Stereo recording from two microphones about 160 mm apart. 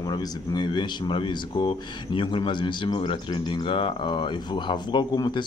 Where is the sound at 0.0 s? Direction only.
25° left (ahead or behind).